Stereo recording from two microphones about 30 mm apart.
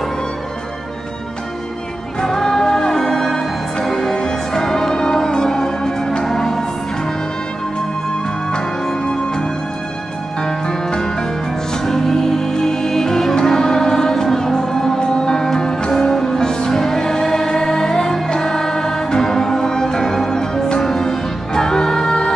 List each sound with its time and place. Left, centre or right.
2.2 s music: centre
9.0 s music: left